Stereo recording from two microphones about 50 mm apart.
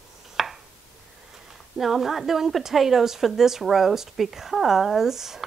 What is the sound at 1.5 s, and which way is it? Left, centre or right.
A woman's voice, centre.